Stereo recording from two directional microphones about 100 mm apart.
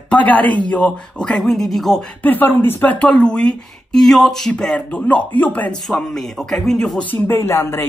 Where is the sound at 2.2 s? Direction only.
20° left (ahead or behind).